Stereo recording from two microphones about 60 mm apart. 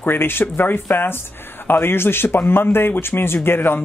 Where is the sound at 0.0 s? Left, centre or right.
Left.